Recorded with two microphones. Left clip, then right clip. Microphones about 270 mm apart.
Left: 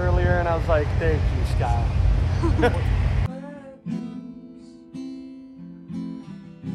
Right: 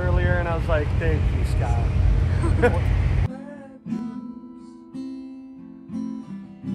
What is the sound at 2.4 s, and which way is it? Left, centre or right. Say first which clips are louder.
Speech: right 1 dB; centre.